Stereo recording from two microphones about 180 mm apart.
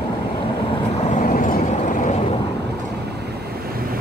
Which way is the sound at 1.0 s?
45° left (ahead or behind).